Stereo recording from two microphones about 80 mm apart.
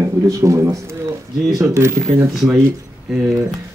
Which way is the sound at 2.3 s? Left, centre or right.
Centre.